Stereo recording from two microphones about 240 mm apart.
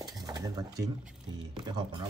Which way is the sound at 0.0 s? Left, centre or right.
Centre.